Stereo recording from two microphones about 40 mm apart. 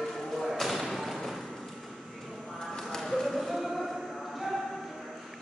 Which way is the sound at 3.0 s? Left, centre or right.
Centre.